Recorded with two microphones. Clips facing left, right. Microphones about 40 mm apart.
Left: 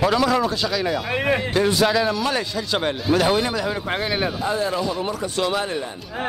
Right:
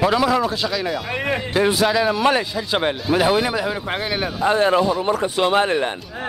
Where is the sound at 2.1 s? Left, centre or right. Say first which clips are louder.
Right 5 dB; right; by 4.4 s centre.